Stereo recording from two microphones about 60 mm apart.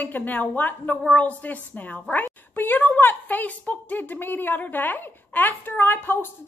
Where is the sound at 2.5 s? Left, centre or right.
Left.